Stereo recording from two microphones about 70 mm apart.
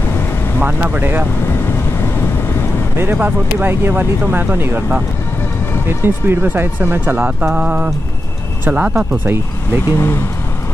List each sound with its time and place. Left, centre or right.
0.6 s speech: right
3.0 s speech: right
5.9 s speech: right; by 9.0 s centre
9.1 s speech: right
9.9 s speech: left